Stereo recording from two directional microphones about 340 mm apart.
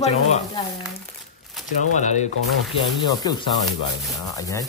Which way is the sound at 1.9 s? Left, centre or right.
Left.